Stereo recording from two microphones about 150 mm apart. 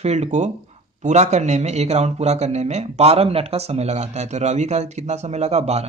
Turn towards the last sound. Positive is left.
turn(degrees=-45)  # may be behind; listen again after turning